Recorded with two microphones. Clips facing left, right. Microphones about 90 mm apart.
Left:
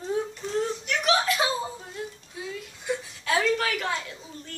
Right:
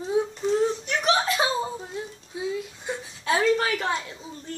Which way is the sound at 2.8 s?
25° right (ahead or behind).